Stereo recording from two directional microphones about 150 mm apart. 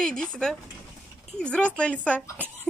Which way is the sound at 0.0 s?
5° left (ahead or behind).